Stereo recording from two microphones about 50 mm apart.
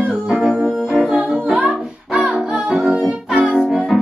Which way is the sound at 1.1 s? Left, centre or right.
Centre.